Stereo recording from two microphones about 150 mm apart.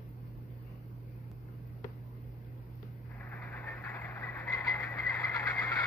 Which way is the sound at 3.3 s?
10° left (ahead or behind).